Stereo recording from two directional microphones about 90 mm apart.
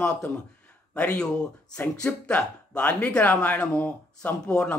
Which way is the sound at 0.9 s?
15° left (ahead or behind).